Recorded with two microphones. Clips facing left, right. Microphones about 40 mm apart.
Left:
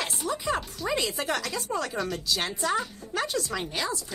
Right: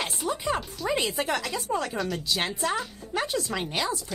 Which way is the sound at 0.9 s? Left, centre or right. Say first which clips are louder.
Right 1 dB; right.